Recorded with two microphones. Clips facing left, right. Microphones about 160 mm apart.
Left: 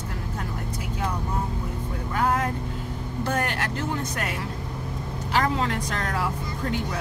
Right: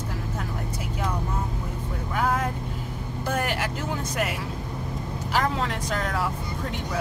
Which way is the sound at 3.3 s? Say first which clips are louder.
Right 1 dB; 5° right (ahead or behind).